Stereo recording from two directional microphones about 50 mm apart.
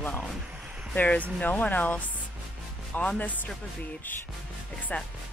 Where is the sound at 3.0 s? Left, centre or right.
Left.